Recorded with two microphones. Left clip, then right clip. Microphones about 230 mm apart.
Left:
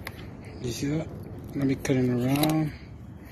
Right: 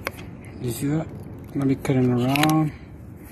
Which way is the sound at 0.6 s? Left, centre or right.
Centre.